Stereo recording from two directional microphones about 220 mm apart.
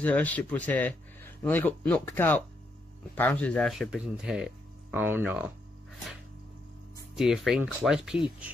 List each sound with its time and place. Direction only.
0.0 s speech: 5° left (ahead or behind)
7.2 s speech: centre (ahead or behind)